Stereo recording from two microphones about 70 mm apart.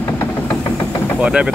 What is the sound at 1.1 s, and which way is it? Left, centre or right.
Speech, centre.